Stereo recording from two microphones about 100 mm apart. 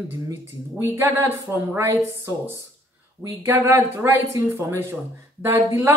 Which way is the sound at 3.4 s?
25° right (ahead or behind).